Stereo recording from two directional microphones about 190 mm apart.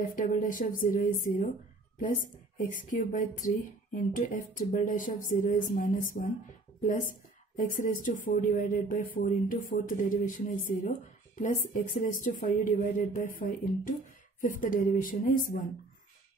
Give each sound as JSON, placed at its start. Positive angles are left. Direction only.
{"t": 0.0, "sound": "speech", "side_deg": 45}
{"t": 2.5, "sound": "speech", "side_deg": 45}